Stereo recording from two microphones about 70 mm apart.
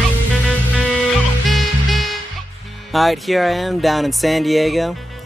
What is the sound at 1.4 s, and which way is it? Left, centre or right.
Music, centre.